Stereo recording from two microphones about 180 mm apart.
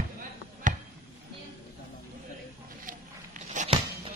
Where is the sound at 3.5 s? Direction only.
35° right (ahead or behind).